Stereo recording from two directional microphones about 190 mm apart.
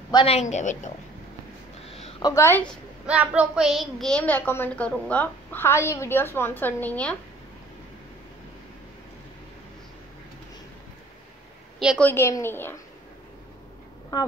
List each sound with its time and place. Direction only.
0.1 s a woman's voice: 30° left (ahead or behind)
1.9 s a sound: 35° left (ahead or behind)
2.2 s a woman's voice: 15° left (ahead or behind)
3.1 s a woman's voice: 5° right (ahead or behind)
12.0 s a woman's voice: 10° left (ahead or behind)